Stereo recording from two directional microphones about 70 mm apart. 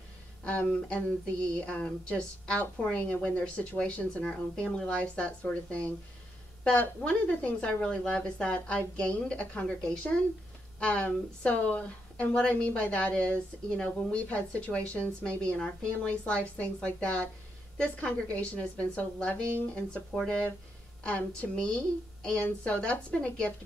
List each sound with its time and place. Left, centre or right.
0.4 s a woman's voice: centre